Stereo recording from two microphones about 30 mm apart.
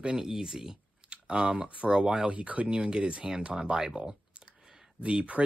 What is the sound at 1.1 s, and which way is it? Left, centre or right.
Speech, right.